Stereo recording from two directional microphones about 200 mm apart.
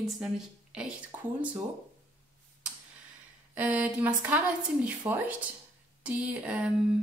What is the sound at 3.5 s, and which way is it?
A woman's voice, 10° right (ahead or behind).